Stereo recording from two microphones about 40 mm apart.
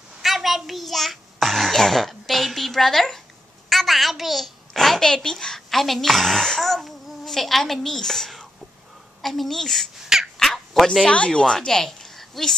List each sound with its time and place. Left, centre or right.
0.2 s a child's voice: centre
10.4 s a sound: centre
10.9 s speech: left